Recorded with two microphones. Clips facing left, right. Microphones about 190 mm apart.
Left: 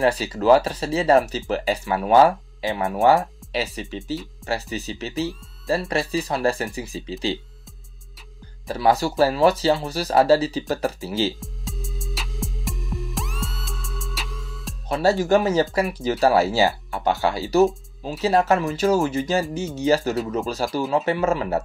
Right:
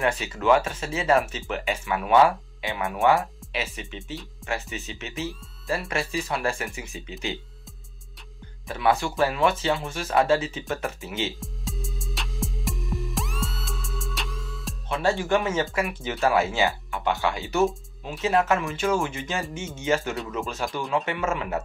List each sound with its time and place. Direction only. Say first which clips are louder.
0.0 s speech: left 5 dB; 35° left (ahead or behind)
8.6 s speech: left 4 dB; 35° left (ahead or behind)
11.3 s music: even; centre (ahead or behind)
14.9 s speech: left 5 dB; 35° left (ahead or behind)